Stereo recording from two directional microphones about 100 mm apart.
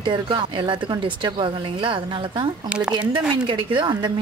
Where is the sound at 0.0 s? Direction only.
55° right (ahead or behind).